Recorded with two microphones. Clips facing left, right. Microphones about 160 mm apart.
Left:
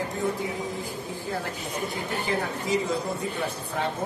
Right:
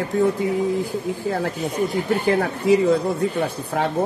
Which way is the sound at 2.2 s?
60° right (ahead or behind).